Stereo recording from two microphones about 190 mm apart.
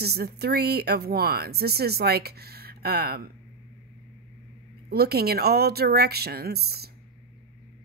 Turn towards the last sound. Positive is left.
turn(degrees=-55)  # may be behind; listen again after turning